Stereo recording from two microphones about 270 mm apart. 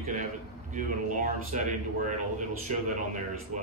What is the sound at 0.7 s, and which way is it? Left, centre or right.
A man's voice, right.